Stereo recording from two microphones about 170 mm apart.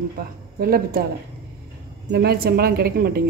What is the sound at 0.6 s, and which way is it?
Speech, 60° right (ahead or behind).